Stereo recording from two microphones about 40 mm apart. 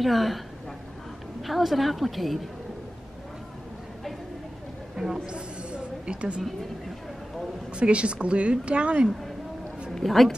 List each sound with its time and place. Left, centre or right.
0.0 s a woman's voice: centre
1.4 s a woman's voice: centre
5.2 s a sound: right
7.7 s a woman's voice: right
10.0 s a woman's voice: centre